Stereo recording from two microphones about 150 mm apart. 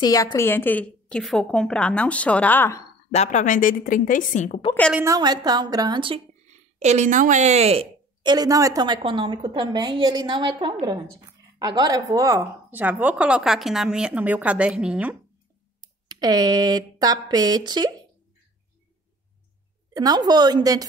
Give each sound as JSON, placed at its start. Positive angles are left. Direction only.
{"t": 0.0, "sound": "a woman's voice", "side_deg": 25}
{"t": 3.1, "sound": "a woman's voice", "side_deg": 50}
{"t": 5.0, "sound": "a woman's voice", "side_deg": -25}
{"t": 6.5, "sound": "a woman's voice", "side_deg": -50}
{"t": 16.1, "sound": "a woman's voice", "side_deg": -25}
{"t": 19.9, "sound": "a woman's voice", "side_deg": -25}